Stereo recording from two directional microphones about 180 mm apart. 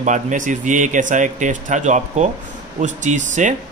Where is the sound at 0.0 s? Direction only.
45° right (ahead or behind).